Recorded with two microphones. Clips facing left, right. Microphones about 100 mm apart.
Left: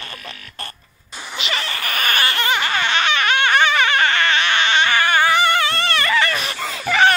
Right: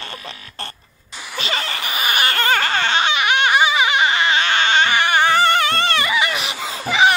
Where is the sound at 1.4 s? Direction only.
35° right (ahead or behind).